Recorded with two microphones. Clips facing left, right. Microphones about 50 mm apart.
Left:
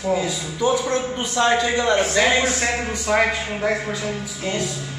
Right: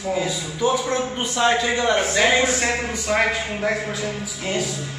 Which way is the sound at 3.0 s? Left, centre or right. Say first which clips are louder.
Left 2 dB; centre.